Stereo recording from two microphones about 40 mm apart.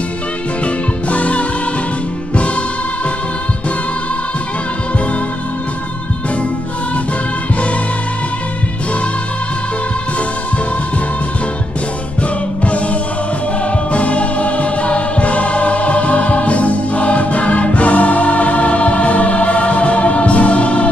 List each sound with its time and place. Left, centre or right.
1.0 s music: left
12.2 s music: left